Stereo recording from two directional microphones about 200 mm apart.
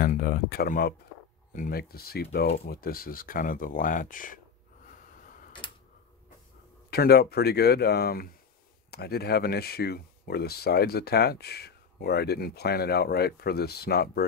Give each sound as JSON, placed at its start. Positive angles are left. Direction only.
{"t": 0.0, "sound": "speech", "side_deg": 50}
{"t": 6.9, "sound": "speech", "side_deg": 50}